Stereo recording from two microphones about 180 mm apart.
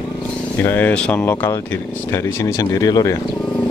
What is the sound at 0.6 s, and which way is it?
Speech, 10° left (ahead or behind).